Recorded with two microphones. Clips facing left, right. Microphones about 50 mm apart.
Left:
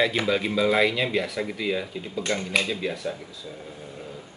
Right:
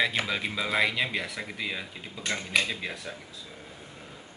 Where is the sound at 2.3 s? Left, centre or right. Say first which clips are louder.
Left 2 dB; centre.